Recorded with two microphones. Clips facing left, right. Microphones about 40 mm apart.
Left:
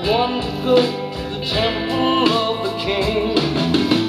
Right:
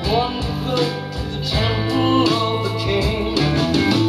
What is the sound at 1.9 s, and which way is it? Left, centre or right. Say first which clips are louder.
Music: even; left.